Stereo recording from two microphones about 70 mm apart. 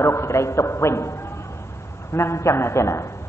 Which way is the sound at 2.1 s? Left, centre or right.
Left.